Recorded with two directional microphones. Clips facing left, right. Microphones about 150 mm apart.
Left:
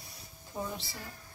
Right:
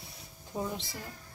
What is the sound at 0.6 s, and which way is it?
Speech, 5° right (ahead or behind).